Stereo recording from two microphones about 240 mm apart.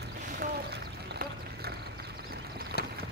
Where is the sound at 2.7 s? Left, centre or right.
Right.